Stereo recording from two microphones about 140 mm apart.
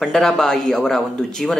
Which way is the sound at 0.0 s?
5° left (ahead or behind).